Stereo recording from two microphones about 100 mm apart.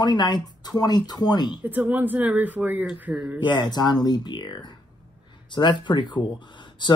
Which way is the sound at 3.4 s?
45° left (ahead or behind).